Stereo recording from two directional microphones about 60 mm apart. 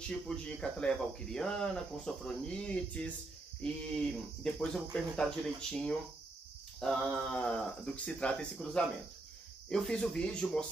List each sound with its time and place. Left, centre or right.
0.1 s speech: centre
6.8 s a sound: centre
7.4 s speech: left